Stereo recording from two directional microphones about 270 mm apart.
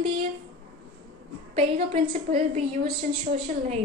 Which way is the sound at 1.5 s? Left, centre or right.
Right.